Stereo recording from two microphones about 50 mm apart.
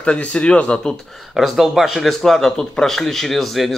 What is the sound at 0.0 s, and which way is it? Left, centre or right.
Speech, left.